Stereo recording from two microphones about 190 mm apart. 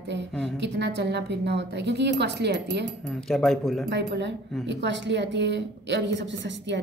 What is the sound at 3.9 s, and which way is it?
A woman's voice, 65° right (ahead or behind).